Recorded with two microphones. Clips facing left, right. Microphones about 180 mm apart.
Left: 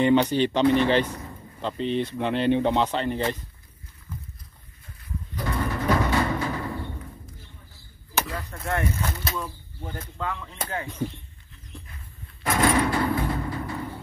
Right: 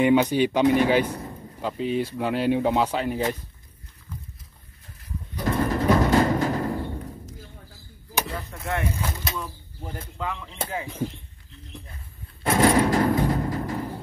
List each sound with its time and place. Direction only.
0.0 s speech: 10° right (ahead or behind)
5.4 s bird: 35° right (ahead or behind)
5.9 s music: 40° right (ahead or behind)
8.4 s speech: centre (ahead or behind)
10.3 s speech: 25° right (ahead or behind)
10.7 s speech: 10° right (ahead or behind)
12.4 s a sound: 30° right (ahead or behind)
13.2 s music: 40° right (ahead or behind)